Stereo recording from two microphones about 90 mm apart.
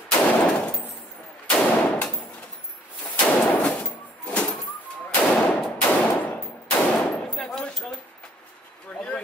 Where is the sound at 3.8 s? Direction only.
15° left (ahead or behind).